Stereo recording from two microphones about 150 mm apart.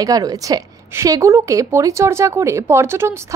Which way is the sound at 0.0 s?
25° right (ahead or behind).